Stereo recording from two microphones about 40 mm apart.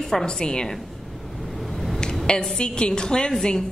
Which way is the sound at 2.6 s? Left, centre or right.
Left.